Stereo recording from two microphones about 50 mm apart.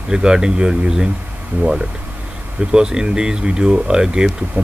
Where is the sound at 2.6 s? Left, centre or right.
Centre.